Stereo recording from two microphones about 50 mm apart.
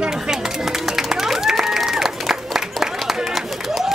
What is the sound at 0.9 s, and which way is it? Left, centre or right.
Applause, centre.